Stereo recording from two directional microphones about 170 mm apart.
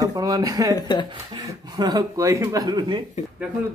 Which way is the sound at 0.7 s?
25° left (ahead or behind).